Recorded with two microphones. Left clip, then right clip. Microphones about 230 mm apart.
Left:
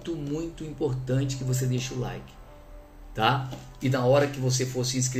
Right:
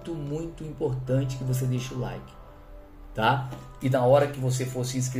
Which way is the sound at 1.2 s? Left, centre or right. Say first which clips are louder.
Left 2 dB; right.